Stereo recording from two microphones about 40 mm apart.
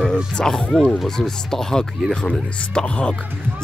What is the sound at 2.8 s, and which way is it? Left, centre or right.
Speech, left.